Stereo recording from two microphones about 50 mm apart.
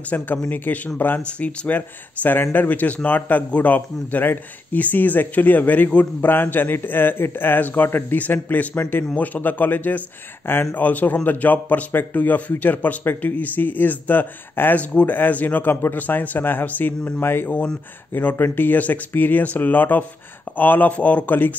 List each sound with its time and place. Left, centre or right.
0.1 s a man's voice: left
6.2 s a man's voice: left
17.2 s a man's voice: left